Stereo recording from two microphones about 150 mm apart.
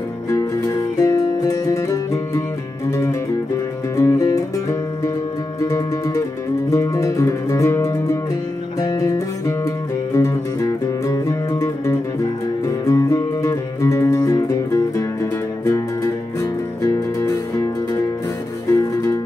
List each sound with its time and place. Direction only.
0.3 s music: 20° left (ahead or behind)
3.9 s music: 20° left (ahead or behind)
16.3 s music: 20° left (ahead or behind)